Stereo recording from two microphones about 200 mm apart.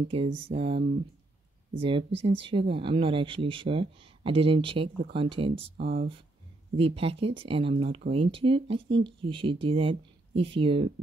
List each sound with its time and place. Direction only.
0.1 s speech: 25° right (ahead or behind)
5.8 s speech: 45° right (ahead or behind)
6.8 s speech: 30° right (ahead or behind)